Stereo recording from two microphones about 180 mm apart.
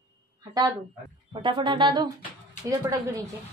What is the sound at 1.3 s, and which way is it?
A woman's voice, 25° right (ahead or behind).